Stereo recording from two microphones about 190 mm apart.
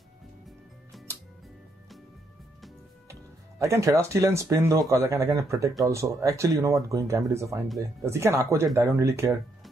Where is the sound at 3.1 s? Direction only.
15° right (ahead or behind).